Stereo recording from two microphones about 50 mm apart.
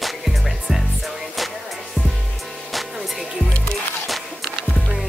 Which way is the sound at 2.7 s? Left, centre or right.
Centre.